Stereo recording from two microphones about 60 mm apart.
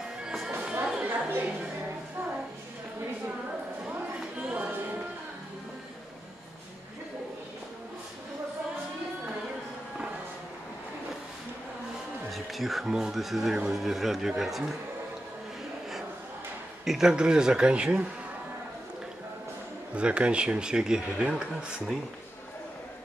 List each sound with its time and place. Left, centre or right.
0.5 s music: right
1.0 s a sound: right
4.2 s a sound: centre
12.3 s speech: centre
16.8 s speech: centre
19.9 s speech: centre